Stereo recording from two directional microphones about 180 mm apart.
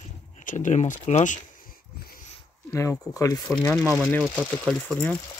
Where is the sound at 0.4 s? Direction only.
45° left (ahead or behind).